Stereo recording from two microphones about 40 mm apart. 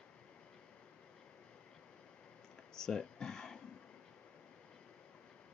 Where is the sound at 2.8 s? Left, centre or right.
Centre.